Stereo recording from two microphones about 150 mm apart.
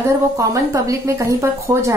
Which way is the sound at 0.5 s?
20° right (ahead or behind).